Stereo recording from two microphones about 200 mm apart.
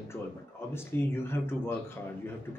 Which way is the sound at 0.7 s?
10° left (ahead or behind).